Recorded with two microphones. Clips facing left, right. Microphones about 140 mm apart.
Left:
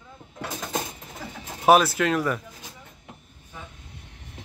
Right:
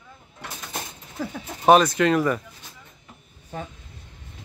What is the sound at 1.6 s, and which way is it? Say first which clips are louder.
Speech: right 2 dB; 5° left (ahead or behind).